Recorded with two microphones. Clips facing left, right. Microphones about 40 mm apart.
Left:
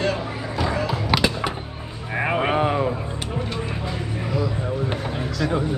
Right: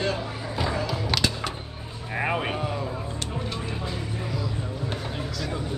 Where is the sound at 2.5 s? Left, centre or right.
Left.